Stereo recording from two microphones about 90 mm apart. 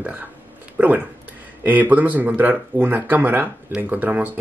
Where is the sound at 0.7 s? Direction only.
15° right (ahead or behind).